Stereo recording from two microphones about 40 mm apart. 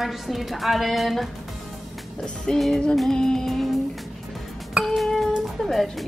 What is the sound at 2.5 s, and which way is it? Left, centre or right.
Speech, left.